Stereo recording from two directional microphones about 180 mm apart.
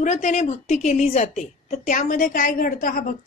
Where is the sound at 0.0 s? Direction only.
40° left (ahead or behind).